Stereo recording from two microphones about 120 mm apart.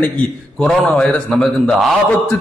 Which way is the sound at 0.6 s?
10° left (ahead or behind).